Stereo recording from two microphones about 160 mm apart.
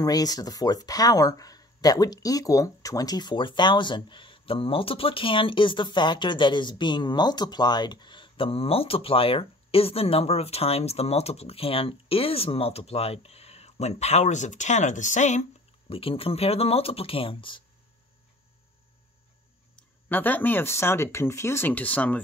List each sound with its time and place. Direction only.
0.0 s speech: 25° left (ahead or behind); by 15.4 s 50° left (ahead or behind)
15.9 s speech: 35° left (ahead or behind)
19.7 s speech: 10° left (ahead or behind)